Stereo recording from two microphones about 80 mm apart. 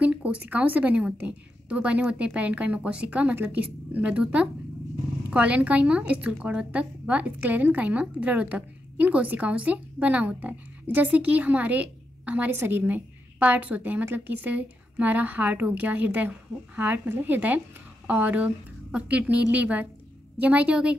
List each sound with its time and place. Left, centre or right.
0.0 s a woman's voice: centre